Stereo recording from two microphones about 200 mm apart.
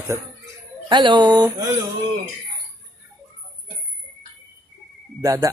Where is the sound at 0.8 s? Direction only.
25° right (ahead or behind).